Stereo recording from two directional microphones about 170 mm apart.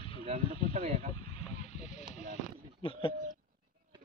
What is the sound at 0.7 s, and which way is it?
Snake, 45° right (ahead or behind).